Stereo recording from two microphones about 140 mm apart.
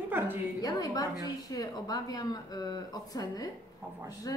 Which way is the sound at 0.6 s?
25° left (ahead or behind).